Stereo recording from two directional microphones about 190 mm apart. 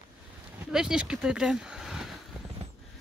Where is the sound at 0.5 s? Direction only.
5° right (ahead or behind).